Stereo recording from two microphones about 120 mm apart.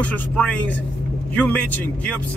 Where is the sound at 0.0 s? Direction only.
10° left (ahead or behind).